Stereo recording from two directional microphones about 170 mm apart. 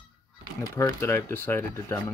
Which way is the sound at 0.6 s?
15° left (ahead or behind).